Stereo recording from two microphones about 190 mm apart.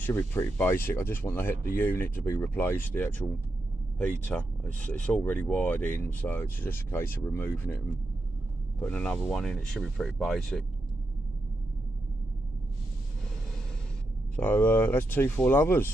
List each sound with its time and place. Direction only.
0.0 s speech: 10° left (ahead or behind)
14.3 s speech: 10° left (ahead or behind)